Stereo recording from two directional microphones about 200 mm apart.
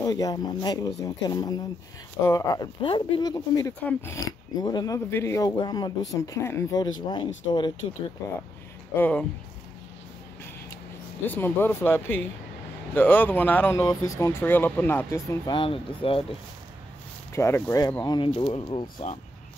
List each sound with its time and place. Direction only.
0.0 s speech: 20° left (ahead or behind)
11.2 s speech: 10° left (ahead or behind); by 16.3 s 30° left (ahead or behind)
17.3 s speech: 15° left (ahead or behind)